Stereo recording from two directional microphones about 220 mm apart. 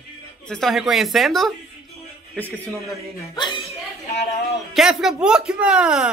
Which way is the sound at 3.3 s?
20° left (ahead or behind).